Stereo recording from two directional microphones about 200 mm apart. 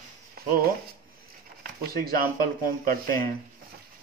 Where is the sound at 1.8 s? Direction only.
50° right (ahead or behind).